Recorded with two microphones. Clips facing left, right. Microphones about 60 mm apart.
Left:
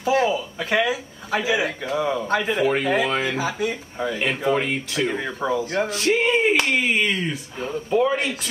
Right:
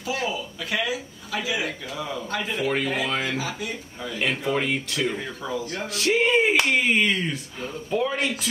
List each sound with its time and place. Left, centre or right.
0.0 s a man's voice: left
2.5 s speech: centre
3.3 s speech: left
4.2 s speech: centre
5.5 s speech: left
5.9 s speech: centre